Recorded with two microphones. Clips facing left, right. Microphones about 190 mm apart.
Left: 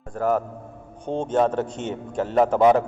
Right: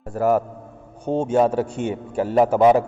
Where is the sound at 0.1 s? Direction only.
5° right (ahead or behind).